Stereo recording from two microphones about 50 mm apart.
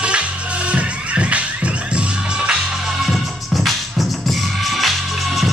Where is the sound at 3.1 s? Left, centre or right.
Centre.